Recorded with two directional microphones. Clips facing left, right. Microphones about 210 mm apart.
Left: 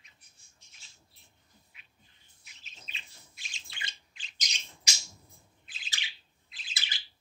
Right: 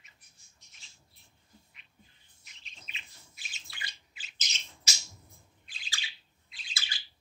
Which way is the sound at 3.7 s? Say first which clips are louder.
Left 1 dB; 25° left (ahead or behind).